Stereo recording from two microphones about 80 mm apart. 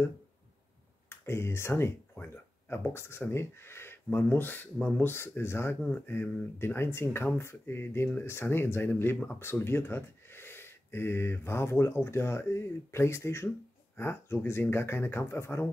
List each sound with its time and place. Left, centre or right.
1.0 s speech: left